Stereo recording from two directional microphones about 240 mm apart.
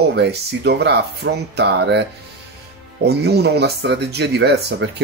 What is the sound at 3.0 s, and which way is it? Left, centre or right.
Speech, right.